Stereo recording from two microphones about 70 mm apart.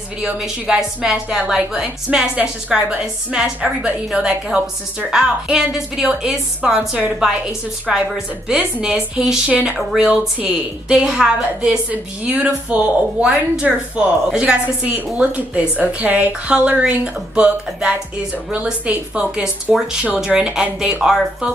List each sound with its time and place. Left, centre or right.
0.2 s a woman's voice: centre